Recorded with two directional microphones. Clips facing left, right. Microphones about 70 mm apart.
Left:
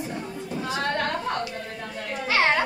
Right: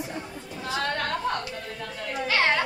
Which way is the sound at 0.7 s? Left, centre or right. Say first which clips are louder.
Left 1 dB; left.